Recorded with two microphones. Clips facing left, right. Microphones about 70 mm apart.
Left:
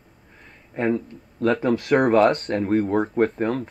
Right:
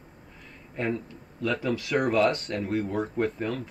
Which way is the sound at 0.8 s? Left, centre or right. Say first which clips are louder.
Left 7 dB; left.